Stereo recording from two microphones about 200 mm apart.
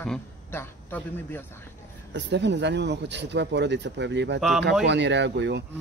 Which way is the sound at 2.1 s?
60° right (ahead or behind).